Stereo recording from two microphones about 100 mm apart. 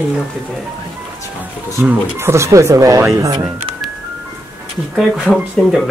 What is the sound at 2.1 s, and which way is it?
Speech, 25° right (ahead or behind).